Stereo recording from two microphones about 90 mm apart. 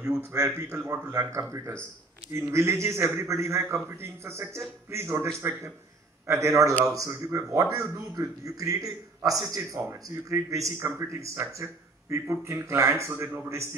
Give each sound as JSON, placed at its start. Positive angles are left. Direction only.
{"t": 0.2, "sound": "a man's voice", "side_deg": -35}